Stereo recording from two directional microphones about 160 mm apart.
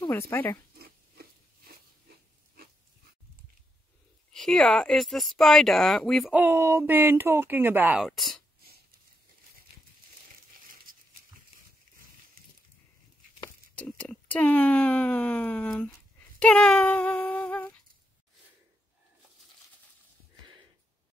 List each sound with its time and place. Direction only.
0.1 s speech: 15° left (ahead or behind)
0.7 s a sound: 70° right (ahead or behind)
4.3 s speech: 5° left (ahead or behind)
6.3 s speech: 15° right (ahead or behind)
10.9 s pig: 65° right (ahead or behind)
13.7 s speech: 5° left (ahead or behind)
16.3 s female singing: 5° left (ahead or behind)